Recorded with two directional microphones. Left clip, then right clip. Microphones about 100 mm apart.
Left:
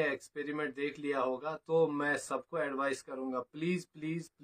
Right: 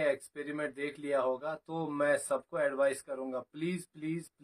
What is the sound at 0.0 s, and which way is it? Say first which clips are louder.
Speech: right 2 dB; 25° right (ahead or behind).